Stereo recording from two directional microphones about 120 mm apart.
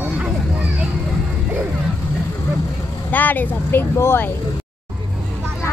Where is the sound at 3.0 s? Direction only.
15° left (ahead or behind).